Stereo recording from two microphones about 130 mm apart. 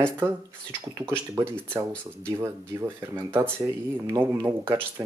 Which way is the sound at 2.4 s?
20° right (ahead or behind).